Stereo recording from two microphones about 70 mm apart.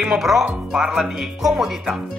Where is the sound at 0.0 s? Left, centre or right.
Centre.